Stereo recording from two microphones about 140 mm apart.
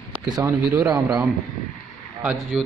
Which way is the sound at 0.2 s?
30° right (ahead or behind).